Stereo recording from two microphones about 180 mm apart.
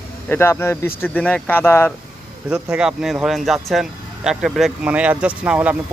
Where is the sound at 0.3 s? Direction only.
15° left (ahead or behind).